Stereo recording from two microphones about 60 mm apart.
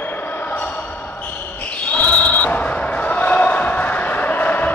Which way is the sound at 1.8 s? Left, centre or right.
Left.